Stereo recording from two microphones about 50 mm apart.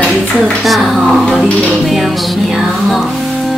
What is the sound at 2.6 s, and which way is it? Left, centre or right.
Music, centre.